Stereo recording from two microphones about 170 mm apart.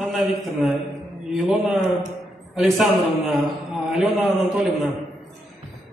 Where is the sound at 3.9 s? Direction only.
Centre (ahead or behind).